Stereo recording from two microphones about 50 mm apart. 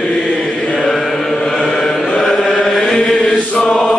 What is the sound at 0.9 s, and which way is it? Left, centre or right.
Speech, centre.